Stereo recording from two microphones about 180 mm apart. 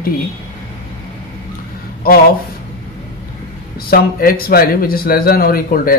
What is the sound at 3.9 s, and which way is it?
A man's voice, 55° left (ahead or behind).